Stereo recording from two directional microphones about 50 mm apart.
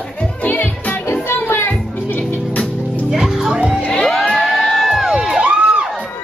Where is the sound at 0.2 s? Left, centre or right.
Left.